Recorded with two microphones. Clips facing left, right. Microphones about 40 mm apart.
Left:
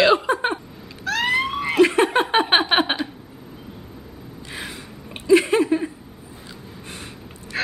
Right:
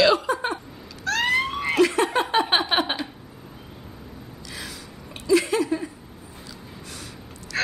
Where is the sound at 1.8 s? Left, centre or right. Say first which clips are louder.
Left 4 dB; left.